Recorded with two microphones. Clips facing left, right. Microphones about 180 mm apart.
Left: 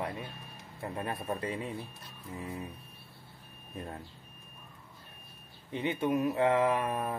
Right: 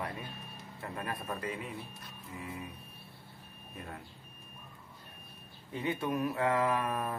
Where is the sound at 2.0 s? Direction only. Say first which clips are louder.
Left 3 dB; 30° left (ahead or behind).